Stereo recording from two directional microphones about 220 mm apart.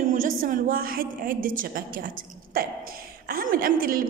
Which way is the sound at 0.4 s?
40° right (ahead or behind).